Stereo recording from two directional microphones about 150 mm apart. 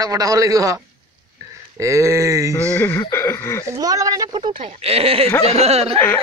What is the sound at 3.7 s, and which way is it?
Speech, 25° right (ahead or behind).